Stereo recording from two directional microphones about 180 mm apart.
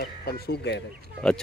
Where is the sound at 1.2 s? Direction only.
5° left (ahead or behind).